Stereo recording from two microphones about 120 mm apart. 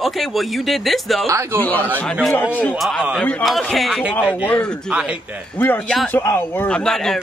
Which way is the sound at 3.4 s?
5° left (ahead or behind).